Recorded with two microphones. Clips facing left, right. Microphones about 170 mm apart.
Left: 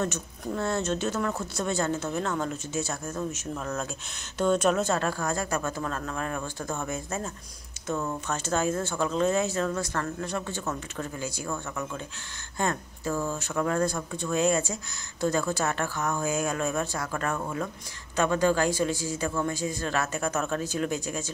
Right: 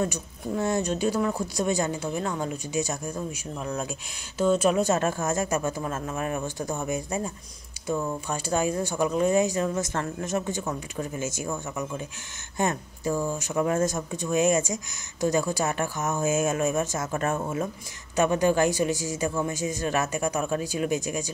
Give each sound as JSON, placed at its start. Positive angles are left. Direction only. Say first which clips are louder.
{"t": 0.0, "sound": "speech", "louder": "right 2 dB", "side_deg": -15}